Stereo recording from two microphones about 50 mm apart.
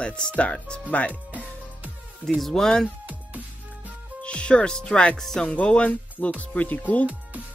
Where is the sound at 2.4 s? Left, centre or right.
Centre.